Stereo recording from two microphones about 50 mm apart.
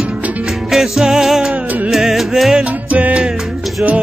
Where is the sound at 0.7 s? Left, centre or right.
Centre.